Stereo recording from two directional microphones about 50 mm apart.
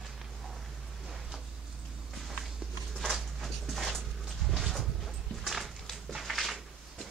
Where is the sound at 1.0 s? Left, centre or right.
Centre.